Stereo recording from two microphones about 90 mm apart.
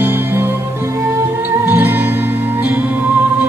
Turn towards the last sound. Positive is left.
turn(degrees=-20)  # may be behind; listen again after turning